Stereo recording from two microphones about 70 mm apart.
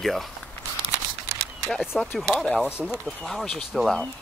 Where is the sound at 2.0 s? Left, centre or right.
Centre.